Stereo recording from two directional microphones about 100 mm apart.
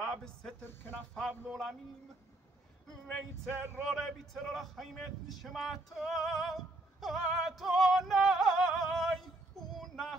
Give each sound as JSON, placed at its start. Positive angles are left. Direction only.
{"t": 0.0, "sound": "a man's voice", "side_deg": 5}
{"t": 3.4, "sound": "a sound", "side_deg": -20}
{"t": 3.8, "sound": "a man's voice", "side_deg": 0}
{"t": 9.8, "sound": "child singing", "side_deg": 0}